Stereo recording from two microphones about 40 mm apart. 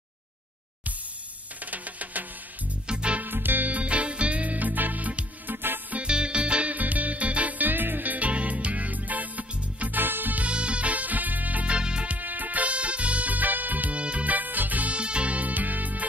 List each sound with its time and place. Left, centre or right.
1.6 s music: right
2.9 s music: right
3.2 s music: right
3.6 s music: right
5.5 s music: right
6.0 s music: right
6.7 s music: right
9.9 s music: right
10.4 s music: right
11.7 s music: right
12.1 s music: right
13.9 s music: right
15.0 s music: right